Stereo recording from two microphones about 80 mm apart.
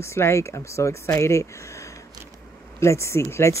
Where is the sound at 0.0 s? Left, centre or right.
Left.